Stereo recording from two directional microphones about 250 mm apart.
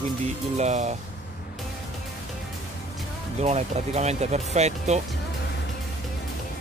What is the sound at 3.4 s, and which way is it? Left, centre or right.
Speech, right.